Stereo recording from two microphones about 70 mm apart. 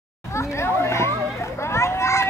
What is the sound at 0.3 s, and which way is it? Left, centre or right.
Children playing, left.